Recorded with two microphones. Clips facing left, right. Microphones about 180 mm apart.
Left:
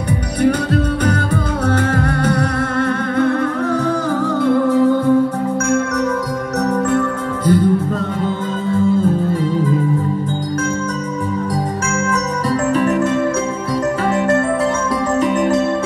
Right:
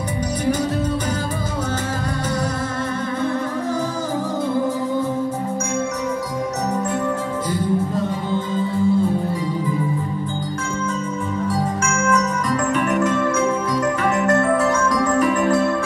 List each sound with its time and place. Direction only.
2.0 s music: 60° left (ahead or behind)
4.5 s music: 65° left (ahead or behind)
6.9 s music: 60° left (ahead or behind)
12.7 s music: 30° left (ahead or behind)
15.1 s music: 25° left (ahead or behind)